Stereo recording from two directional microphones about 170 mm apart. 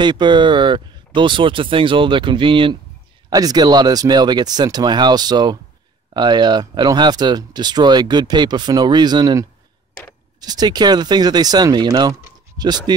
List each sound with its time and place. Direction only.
0.0 s speech: 25° right (ahead or behind)